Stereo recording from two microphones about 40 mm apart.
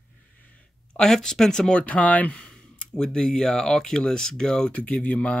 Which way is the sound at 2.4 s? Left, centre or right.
Left.